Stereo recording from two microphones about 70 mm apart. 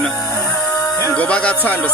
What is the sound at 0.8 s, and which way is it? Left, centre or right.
Music, left.